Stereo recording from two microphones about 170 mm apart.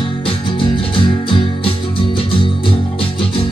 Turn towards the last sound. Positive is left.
turn(degrees=30)  # may be behind; listen again after turning